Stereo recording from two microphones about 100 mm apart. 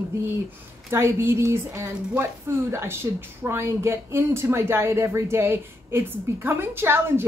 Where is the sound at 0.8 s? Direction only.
25° right (ahead or behind).